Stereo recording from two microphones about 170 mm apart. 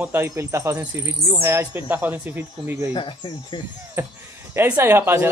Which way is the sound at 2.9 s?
30° left (ahead or behind).